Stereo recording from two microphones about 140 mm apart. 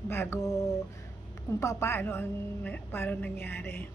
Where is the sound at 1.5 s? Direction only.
20° left (ahead or behind).